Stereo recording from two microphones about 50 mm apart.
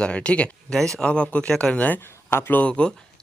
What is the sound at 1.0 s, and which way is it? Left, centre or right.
Speech, centre.